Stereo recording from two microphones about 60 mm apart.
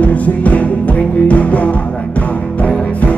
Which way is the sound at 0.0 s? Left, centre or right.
Left.